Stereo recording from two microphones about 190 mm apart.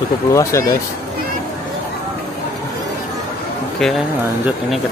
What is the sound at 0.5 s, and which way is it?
Speech, 15° left (ahead or behind).